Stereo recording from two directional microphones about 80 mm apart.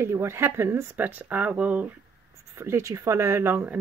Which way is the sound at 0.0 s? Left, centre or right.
Right.